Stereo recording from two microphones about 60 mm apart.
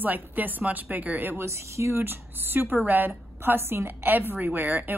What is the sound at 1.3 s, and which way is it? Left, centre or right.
Speech, right.